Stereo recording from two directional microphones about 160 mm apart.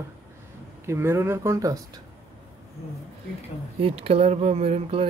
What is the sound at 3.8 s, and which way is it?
Speech, 35° right (ahead or behind).